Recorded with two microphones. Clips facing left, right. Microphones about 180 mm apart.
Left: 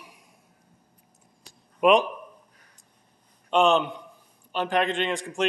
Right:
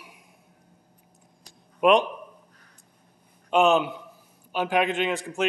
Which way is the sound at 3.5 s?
5° right (ahead or behind).